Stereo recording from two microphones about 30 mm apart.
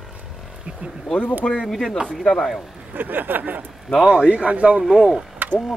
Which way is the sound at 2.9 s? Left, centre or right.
Right.